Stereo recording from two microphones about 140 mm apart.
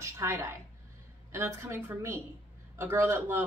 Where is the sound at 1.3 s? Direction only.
20° right (ahead or behind).